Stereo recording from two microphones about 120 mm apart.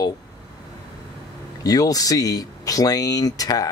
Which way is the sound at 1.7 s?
30° left (ahead or behind).